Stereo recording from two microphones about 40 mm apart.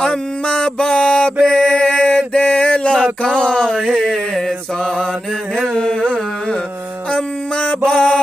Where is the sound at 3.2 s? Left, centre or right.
Left.